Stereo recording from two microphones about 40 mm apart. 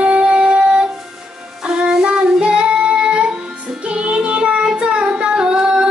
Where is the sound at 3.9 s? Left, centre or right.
Right.